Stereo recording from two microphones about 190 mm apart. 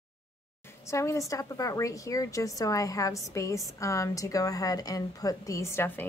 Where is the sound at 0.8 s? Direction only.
15° left (ahead or behind).